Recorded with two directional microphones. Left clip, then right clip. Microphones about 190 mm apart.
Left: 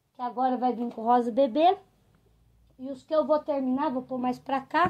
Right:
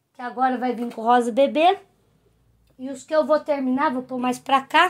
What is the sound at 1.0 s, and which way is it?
Speech, 10° right (ahead or behind).